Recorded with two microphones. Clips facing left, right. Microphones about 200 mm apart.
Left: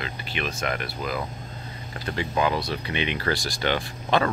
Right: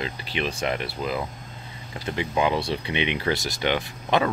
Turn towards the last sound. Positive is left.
turn(degrees=-15)  # may be behind; listen again after turning